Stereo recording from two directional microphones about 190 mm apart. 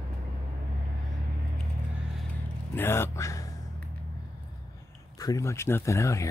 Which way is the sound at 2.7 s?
10° left (ahead or behind).